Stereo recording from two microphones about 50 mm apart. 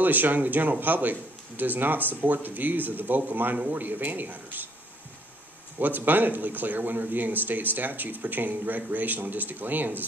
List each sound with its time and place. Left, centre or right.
0.0 s speech: right
5.8 s speech: right